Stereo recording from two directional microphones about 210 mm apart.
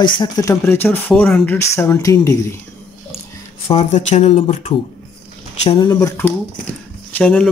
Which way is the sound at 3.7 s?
30° left (ahead or behind).